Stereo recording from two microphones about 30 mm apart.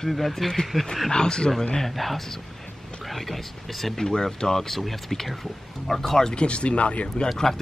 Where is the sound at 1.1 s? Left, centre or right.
Left.